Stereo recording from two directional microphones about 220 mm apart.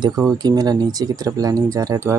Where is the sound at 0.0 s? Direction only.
15° right (ahead or behind).